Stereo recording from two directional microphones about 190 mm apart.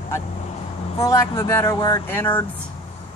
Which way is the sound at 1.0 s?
15° left (ahead or behind).